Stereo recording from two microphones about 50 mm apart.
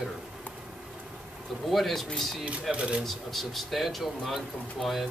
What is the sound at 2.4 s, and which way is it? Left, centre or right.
Speech, right.